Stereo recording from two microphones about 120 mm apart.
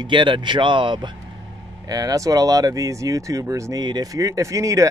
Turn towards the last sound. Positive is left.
turn(degrees=-25)  # may be behind; listen again after turning